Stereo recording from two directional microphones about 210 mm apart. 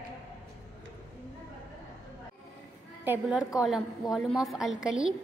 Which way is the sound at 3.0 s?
5° right (ahead or behind).